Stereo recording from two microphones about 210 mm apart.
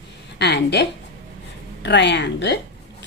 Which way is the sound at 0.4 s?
55° left (ahead or behind).